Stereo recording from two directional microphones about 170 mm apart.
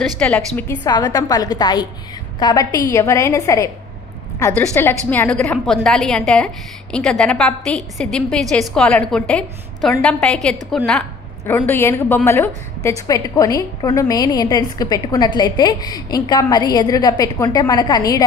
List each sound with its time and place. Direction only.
0.0 s a woman's voice: 5° left (ahead or behind)
0.8 s a woman's voice: 25° left (ahead or behind)